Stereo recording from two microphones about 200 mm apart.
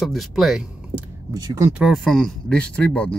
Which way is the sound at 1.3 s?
15° right (ahead or behind).